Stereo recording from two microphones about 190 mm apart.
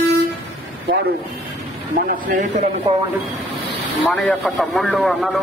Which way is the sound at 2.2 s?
45° right (ahead or behind).